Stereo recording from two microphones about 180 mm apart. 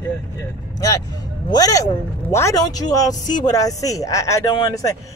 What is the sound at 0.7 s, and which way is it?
Speech, 20° left (ahead or behind).